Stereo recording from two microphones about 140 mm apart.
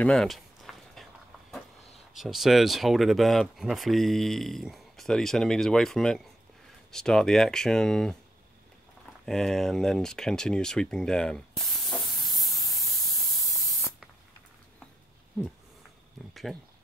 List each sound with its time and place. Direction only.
0.0 s a sound: 5° left (ahead or behind)
2.1 s speech: centre (ahead or behind)
9.2 s speech: 5° left (ahead or behind)
11.8 s spray: centre (ahead or behind)
12.8 s spray: 25° left (ahead or behind)
16.5 s speech: centre (ahead or behind)